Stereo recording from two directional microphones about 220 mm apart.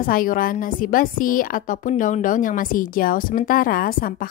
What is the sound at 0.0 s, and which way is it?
A woman's voice, 40° left (ahead or behind).